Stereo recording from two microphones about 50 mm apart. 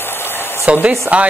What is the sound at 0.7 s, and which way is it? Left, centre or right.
Speech, right.